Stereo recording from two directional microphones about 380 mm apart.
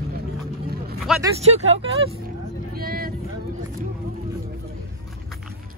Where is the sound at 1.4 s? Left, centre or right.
Centre.